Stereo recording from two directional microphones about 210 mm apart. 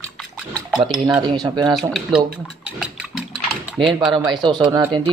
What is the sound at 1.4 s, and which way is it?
Speech, 20° right (ahead or behind).